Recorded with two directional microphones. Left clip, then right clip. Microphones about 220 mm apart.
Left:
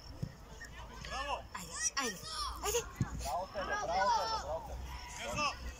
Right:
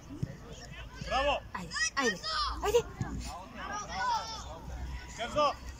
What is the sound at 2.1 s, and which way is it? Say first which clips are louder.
Speech: right 8 dB; 40° right (ahead or behind).